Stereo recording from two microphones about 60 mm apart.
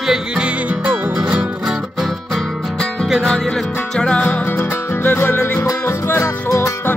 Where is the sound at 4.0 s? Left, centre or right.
Centre.